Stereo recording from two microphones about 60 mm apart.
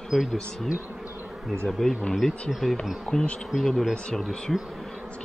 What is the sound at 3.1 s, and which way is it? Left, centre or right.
Speech, centre.